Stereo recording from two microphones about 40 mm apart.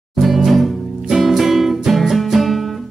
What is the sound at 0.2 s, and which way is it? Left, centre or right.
Music, centre.